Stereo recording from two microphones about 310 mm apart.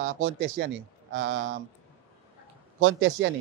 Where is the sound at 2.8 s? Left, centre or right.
Right.